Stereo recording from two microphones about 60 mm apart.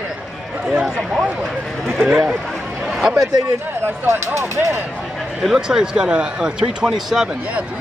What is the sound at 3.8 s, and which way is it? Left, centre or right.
Speech, right.